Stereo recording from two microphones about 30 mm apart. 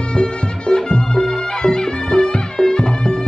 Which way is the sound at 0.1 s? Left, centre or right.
Left.